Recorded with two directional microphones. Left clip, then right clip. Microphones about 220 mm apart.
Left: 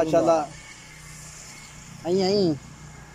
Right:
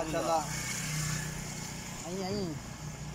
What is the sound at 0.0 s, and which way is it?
Speech, 50° left (ahead or behind).